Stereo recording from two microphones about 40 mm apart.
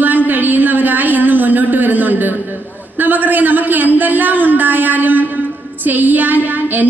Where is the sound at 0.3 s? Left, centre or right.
Right.